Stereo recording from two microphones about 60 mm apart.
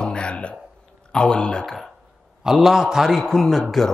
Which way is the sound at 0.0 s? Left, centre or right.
Centre.